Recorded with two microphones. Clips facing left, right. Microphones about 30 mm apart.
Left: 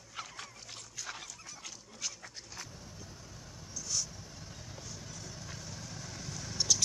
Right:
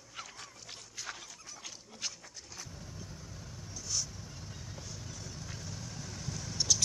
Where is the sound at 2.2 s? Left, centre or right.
Left.